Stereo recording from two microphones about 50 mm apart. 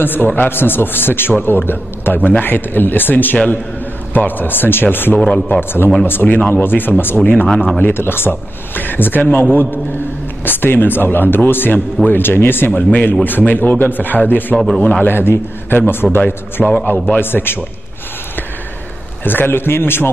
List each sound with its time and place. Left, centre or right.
0.0 s a man's voice: left
7.4 s a man's voice: centre
7.8 s a man's voice: left
12.7 s a man's voice: left
14.8 s a man's voice: left
15.0 s speech: left
16.6 s a man's voice: centre
17.2 s speech: left
19.2 s speech: left